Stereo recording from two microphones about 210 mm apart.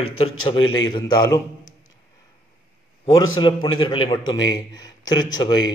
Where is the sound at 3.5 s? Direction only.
20° left (ahead or behind).